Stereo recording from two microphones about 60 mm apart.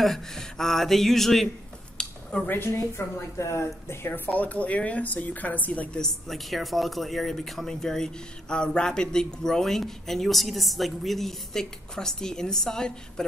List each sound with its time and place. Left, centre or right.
0.0 s speech: centre
2.0 s a sound: centre
2.4 s a woman's voice: left
3.0 s a woman's voice: left
4.3 s speech: left
5.9 s speech: centre